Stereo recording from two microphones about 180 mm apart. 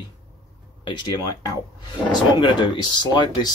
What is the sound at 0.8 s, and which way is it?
Speech, 25° left (ahead or behind).